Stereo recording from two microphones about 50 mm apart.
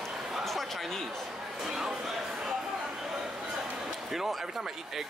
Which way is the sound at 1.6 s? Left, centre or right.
Centre.